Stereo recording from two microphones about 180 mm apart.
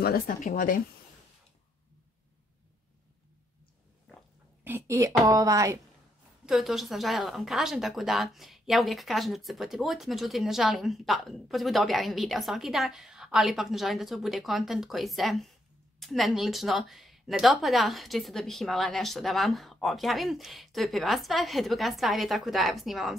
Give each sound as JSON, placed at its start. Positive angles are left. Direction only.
{"t": 0.0, "sound": "speech", "side_deg": 50}
{"t": 4.6, "sound": "a woman's voice", "side_deg": -15}
{"t": 6.4, "sound": "speech", "side_deg": 0}